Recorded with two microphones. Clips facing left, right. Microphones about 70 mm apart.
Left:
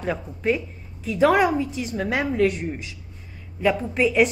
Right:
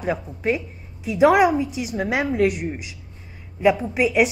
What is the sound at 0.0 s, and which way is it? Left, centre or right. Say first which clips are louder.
Speech: right 1 dB; centre.